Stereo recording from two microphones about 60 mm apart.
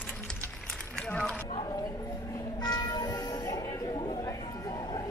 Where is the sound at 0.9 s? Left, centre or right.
Centre.